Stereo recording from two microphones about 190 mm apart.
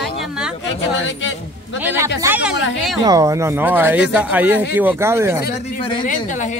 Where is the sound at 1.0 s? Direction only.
75° left (ahead or behind).